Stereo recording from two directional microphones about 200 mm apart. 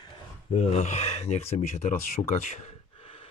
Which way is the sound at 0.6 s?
35° left (ahead or behind).